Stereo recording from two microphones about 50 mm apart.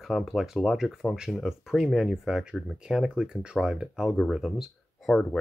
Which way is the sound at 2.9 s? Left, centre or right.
Centre.